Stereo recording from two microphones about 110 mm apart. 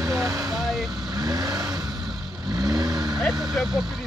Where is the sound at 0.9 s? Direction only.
35° right (ahead or behind).